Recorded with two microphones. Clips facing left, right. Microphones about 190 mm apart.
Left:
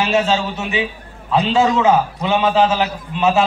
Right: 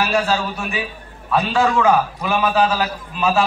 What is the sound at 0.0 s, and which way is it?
A man's voice, 20° left (ahead or behind).